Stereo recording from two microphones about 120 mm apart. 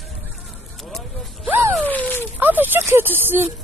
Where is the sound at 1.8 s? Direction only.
15° left (ahead or behind).